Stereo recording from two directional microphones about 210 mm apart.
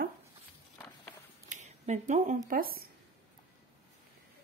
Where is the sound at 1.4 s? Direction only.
35° right (ahead or behind).